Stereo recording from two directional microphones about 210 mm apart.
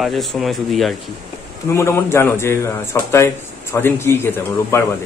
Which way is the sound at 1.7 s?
10° left (ahead or behind).